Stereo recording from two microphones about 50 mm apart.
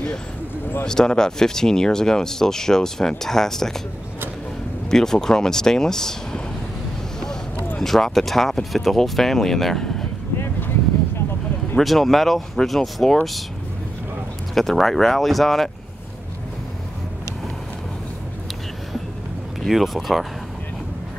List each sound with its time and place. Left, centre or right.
0.8 s speech: centre
4.9 s speech: centre
7.8 s speech: centre
11.8 s speech: centre
14.5 s speech: centre
19.6 s speech: centre